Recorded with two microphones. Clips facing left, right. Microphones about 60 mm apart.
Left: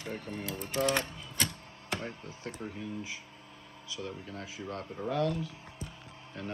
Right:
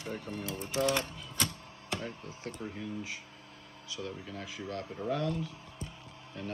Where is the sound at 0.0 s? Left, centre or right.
Left.